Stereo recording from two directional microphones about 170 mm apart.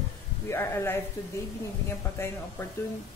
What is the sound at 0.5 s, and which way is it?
Speech, 15° left (ahead or behind).